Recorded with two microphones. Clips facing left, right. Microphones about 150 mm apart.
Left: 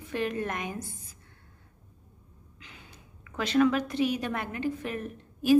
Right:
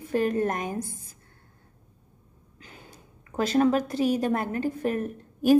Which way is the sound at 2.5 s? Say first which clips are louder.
Right 4 dB; 40° right (ahead or behind).